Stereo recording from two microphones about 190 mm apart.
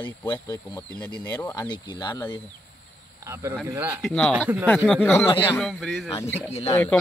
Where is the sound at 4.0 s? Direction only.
Centre (ahead or behind).